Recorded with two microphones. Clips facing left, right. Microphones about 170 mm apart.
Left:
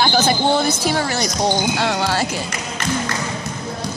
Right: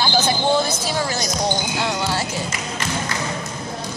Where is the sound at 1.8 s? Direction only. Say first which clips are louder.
Left 3 dB; 65° left (ahead or behind).